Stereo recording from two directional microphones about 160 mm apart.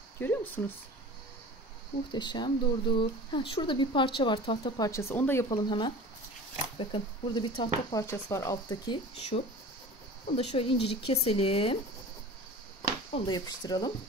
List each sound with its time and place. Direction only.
0.2 s speech: 15° left (ahead or behind)
2.1 s speech: 30° left (ahead or behind); by 5.5 s 15° left (ahead or behind)
5.5 s speech: 30° left (ahead or behind)
8.0 s speech: 20° left (ahead or behind); by 11.8 s 35° left (ahead or behind)
13.1 s speech: 25° left (ahead or behind)